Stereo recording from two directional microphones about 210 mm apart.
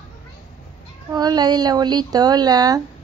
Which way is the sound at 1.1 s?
20° right (ahead or behind).